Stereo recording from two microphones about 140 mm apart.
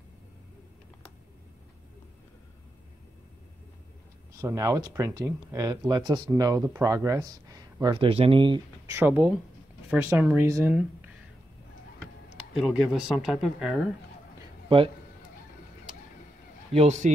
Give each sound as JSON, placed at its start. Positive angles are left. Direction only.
{"t": 4.4, "sound": "speech", "side_deg": -20}
{"t": 8.9, "sound": "speech", "side_deg": -15}
{"t": 12.5, "sound": "speech", "side_deg": -5}
{"t": 16.7, "sound": "speech", "side_deg": -60}